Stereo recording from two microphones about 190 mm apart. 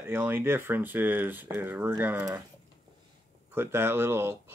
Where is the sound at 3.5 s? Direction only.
10° right (ahead or behind).